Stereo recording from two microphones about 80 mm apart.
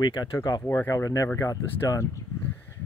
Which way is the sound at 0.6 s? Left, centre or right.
Left.